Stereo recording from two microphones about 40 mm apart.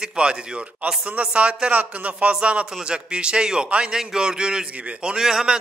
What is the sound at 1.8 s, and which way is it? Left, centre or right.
Speech, right.